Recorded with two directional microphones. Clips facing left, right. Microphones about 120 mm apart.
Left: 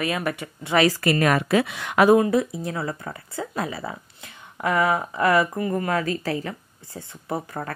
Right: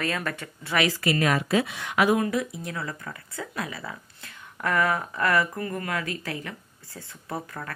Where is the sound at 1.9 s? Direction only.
40° left (ahead or behind).